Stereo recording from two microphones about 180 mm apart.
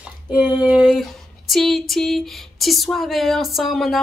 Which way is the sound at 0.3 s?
5° right (ahead or behind).